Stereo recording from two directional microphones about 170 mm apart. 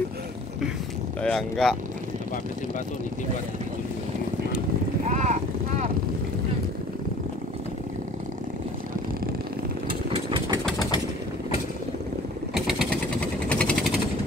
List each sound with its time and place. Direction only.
1.2 s speech: 5° left (ahead or behind)
5.0 s vehicle: 45° right (ahead or behind)
9.8 s vehicle: 30° right (ahead or behind)
13.2 s vehicle: 5° left (ahead or behind)